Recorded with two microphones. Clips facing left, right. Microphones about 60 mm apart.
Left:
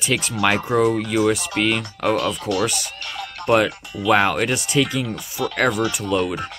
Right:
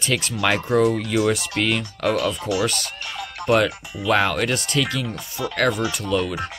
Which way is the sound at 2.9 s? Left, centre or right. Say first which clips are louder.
Even; centre.